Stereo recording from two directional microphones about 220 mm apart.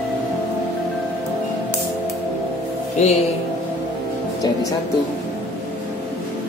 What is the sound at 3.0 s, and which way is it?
Speech, 30° left (ahead or behind).